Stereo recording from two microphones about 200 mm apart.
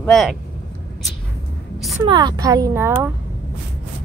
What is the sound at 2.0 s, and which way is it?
Speech, 20° right (ahead or behind).